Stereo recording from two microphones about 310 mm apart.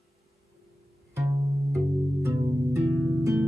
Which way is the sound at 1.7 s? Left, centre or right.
Centre.